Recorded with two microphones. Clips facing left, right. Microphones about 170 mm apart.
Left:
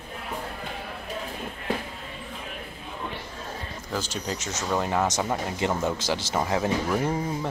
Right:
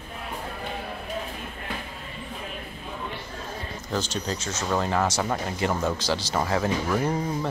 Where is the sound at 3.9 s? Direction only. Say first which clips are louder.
Right 2 dB; 10° left (ahead or behind).